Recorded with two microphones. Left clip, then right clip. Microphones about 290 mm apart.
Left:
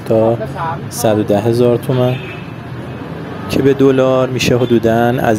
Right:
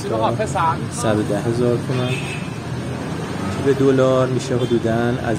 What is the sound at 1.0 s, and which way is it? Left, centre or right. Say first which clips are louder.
Speech: left 8 dB; left.